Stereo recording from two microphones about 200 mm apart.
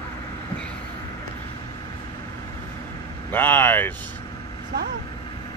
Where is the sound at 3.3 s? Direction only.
10° left (ahead or behind).